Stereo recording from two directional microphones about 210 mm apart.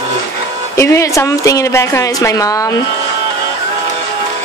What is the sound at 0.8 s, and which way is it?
A woman's voice, 15° left (ahead or behind).